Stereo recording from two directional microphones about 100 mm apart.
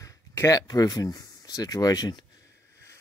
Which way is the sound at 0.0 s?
30° left (ahead or behind).